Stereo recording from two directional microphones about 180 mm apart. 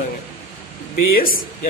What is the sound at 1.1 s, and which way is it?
Speech, 50° left (ahead or behind).